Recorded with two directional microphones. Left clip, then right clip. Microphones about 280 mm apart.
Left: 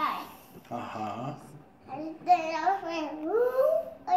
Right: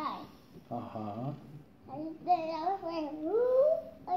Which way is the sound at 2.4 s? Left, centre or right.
Left.